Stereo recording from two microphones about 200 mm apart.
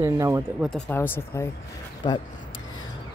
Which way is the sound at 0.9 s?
10° left (ahead or behind).